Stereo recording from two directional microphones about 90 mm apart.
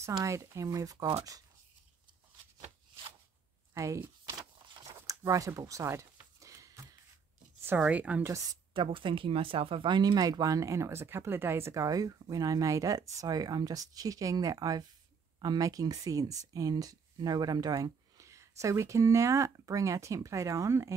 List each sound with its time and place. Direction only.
0.0 s speech: 35° right (ahead or behind)
3.7 s speech: 35° right (ahead or behind)
5.0 s a sound: 40° right (ahead or behind)
7.6 s speech: 20° right (ahead or behind)
8.7 s speech: 75° right (ahead or behind); by 20.9 s 35° right (ahead or behind)